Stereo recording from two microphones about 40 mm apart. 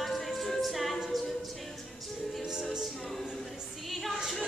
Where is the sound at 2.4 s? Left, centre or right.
Centre.